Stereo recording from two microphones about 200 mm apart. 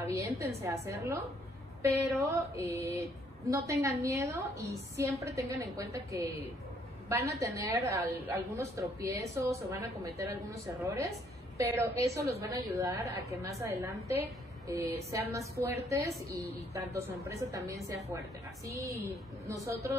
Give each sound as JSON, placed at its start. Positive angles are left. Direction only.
{"t": 0.0, "sound": "a woman's voice", "side_deg": -15}
{"t": 7.1, "sound": "a woman's voice", "side_deg": -15}
{"t": 15.0, "sound": "a woman's voice", "side_deg": -15}